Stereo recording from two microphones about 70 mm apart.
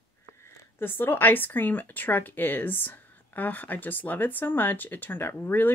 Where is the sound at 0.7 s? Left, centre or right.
Left.